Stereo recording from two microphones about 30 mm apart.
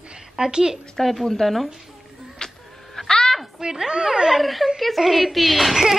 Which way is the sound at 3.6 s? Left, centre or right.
Right.